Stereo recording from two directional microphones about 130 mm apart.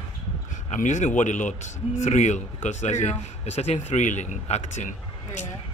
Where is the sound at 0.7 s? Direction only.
70° left (ahead or behind).